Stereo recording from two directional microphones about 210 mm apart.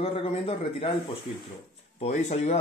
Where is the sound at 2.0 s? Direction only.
30° left (ahead or behind).